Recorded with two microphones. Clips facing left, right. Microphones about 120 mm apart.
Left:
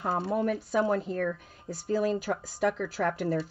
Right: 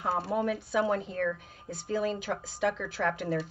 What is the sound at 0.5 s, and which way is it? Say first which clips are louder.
Speech: left 1 dB; 45° left (ahead or behind).